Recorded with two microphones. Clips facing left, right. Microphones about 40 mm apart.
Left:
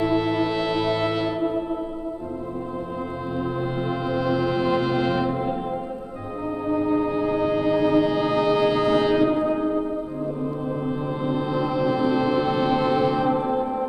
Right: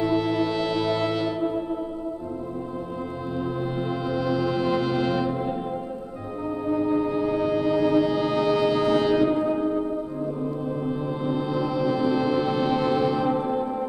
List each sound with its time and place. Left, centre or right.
0.0 s music: centre
4.1 s music: centre
6.7 s music: left
11.2 s music: centre